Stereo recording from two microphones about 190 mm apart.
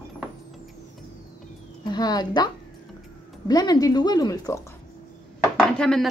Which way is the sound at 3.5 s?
20° left (ahead or behind).